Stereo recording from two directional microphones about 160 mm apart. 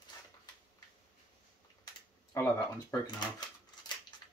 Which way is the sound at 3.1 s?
25° left (ahead or behind).